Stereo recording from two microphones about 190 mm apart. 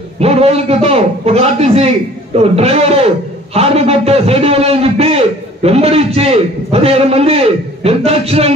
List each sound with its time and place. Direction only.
0.2 s a man's voice: 30° right (ahead or behind)